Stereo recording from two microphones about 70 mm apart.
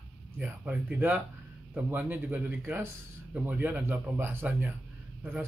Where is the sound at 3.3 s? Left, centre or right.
Right.